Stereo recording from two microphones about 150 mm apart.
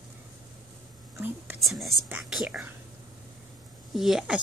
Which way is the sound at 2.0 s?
10° right (ahead or behind).